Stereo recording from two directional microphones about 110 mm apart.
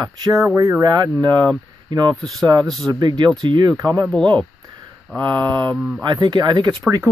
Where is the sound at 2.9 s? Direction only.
40° right (ahead or behind).